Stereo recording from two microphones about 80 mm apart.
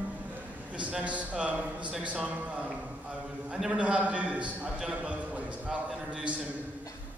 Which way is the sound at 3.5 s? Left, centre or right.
Centre.